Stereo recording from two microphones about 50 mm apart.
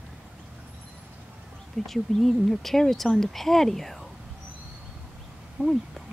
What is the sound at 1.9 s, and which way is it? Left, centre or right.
Speech, centre.